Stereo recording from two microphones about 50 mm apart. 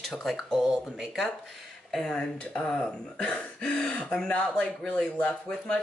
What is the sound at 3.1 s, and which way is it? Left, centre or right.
Speech, centre.